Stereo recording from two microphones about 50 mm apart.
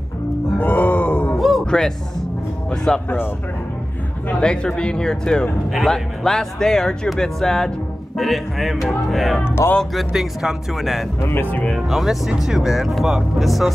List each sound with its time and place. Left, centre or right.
0.6 s groan: left
1.7 s speech: centre
4.4 s speech: centre
9.6 s speech: left
9.9 s speech: centre